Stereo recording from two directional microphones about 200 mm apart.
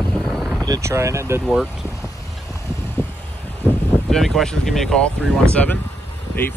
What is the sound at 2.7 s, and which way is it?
Vehicle, 10° left (ahead or behind).